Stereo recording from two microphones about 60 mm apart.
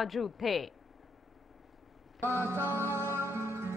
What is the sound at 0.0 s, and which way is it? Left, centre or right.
Speech, centre.